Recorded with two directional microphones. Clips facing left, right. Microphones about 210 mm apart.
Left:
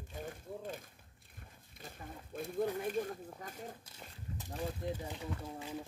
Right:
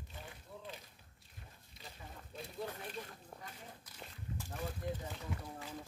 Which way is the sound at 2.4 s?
50° left (ahead or behind).